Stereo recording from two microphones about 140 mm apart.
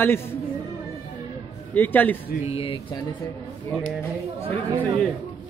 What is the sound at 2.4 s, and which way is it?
Speech, 45° left (ahead or behind).